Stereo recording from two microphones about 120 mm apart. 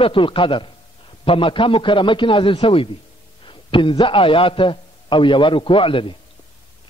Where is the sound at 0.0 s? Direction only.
45° left (ahead or behind).